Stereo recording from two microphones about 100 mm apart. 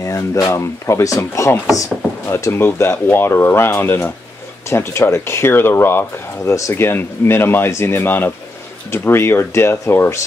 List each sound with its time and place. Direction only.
0.0 s speech: 35° left (ahead or behind)